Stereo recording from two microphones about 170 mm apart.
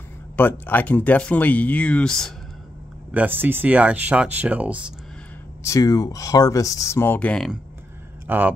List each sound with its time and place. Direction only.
0.4 s speech: 10° left (ahead or behind)
3.1 s speech: 10° right (ahead or behind)
5.6 s speech: 20° left (ahead or behind)
8.3 s speech: 10° right (ahead or behind)